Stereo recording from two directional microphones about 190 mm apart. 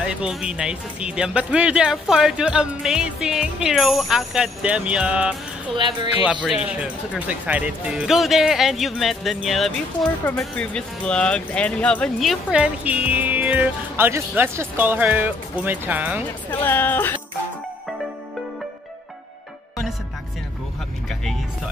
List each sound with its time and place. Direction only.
0.0 s speech: 5° right (ahead or behind)
5.8 s speech: 25° right (ahead or behind)
6.4 s speech: 5° right (ahead or behind)
16.4 s speech: 10° left (ahead or behind)